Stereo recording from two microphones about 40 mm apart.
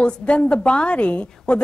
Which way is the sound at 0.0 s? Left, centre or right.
Left.